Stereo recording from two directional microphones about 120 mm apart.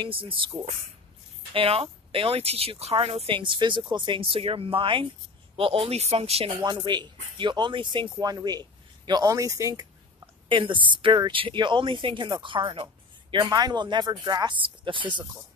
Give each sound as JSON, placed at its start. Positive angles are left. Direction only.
{"t": 0.0, "sound": "speech", "side_deg": -45}
{"t": 1.5, "sound": "speech", "side_deg": -50}
{"t": 3.3, "sound": "speech", "side_deg": -40}
{"t": 6.6, "sound": "speech", "side_deg": -40}
{"t": 10.5, "sound": "speech", "side_deg": -45}